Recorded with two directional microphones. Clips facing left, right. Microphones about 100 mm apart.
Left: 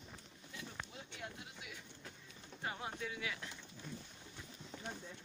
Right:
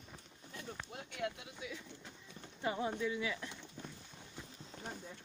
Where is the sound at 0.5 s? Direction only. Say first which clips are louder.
Right 3 dB; 60° right (ahead or behind); by 1.4 s 75° right (ahead or behind).